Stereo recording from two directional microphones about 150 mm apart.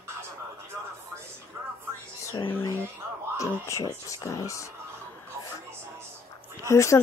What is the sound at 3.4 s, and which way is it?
Speech, 20° left (ahead or behind).